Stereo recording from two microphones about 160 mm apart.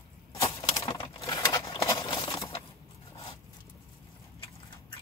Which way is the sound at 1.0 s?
20° left (ahead or behind).